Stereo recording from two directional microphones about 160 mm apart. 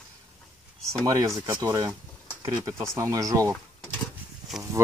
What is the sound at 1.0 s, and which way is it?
Speech, 25° right (ahead or behind).